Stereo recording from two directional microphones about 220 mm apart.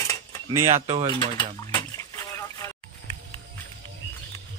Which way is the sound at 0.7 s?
30° right (ahead or behind).